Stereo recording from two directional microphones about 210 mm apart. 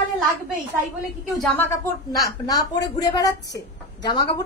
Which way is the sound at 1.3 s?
5° left (ahead or behind).